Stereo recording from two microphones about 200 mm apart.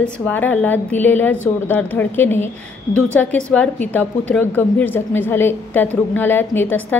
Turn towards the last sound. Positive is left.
turn(degrees=10)  # may be behind; listen again after turning